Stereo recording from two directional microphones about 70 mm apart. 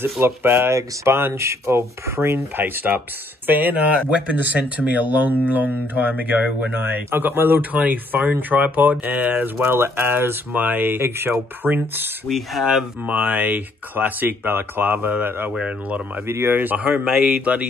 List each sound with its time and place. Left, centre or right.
0.0 s speech: right
12.3 s speech: centre
13.0 s speech: right
16.9 s speech: centre